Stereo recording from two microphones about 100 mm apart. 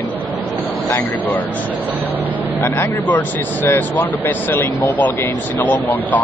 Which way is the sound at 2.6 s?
20° left (ahead or behind).